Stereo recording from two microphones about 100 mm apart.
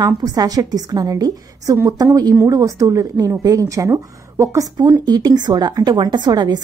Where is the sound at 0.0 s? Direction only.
40° right (ahead or behind).